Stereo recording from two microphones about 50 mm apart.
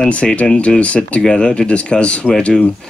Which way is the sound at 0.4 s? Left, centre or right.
Left.